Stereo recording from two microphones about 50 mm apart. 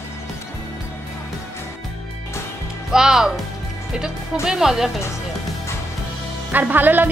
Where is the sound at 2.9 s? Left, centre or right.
Centre.